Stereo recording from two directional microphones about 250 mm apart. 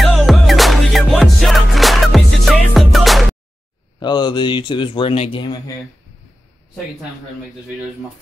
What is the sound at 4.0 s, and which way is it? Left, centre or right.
Speech, centre.